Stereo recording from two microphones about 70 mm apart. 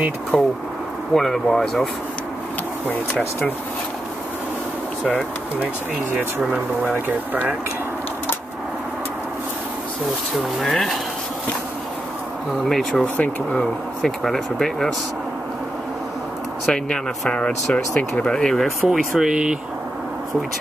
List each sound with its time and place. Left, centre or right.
0.3 s speech: centre
10.6 s speech: centre
12.6 s speech: centre
13.2 s speech: centre
14.0 s speech: centre
16.6 s speech: centre
18.9 s speech: centre